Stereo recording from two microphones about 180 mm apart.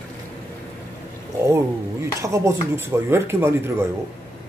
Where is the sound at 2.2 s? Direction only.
15° right (ahead or behind).